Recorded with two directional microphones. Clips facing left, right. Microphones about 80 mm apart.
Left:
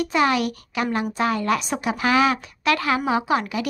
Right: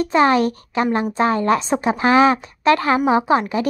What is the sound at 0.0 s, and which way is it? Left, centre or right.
A woman's voice, right.